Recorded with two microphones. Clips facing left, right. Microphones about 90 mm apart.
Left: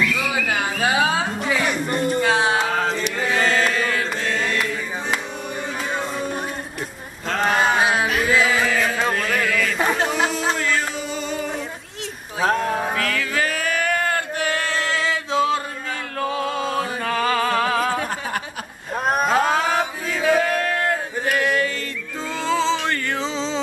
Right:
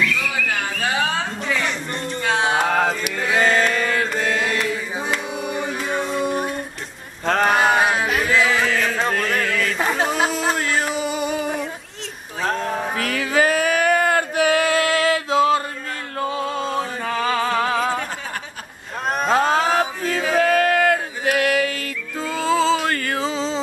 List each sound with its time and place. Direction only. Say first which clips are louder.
0.0 s music: even; 15° left (ahead or behind)
2.6 s music: right 3 dB; 55° right (ahead or behind)
2.9 s mantra: even; 5° right (ahead or behind)
4.6 s a sound: right 1 dB; 5° left (ahead or behind)
5.6 s music: even; 5° right (ahead or behind)
7.4 s a sound: even; 5° right (ahead or behind)
10.6 s music: right 2 dB; 15° right (ahead or behind)
12.4 s a sound: left 3 dB; 10° left (ahead or behind)
12.9 s male singing: right 2 dB; 20° right (ahead or behind); by 15.6 s centre (ahead or behind)
16.3 s music: even; centre (ahead or behind)
19.0 s mantra: even; 5° left (ahead or behind)
20.5 s a sound: right 5 dB; 65° right (ahead or behind)
22.3 s music: right 3 dB; 5° right (ahead or behind)